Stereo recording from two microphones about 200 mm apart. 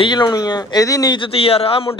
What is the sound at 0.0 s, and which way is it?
Speech, 20° left (ahead or behind).